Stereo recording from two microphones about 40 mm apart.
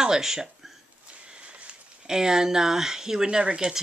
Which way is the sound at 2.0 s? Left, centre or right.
Centre.